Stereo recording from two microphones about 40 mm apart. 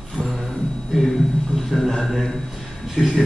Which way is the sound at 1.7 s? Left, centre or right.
Centre.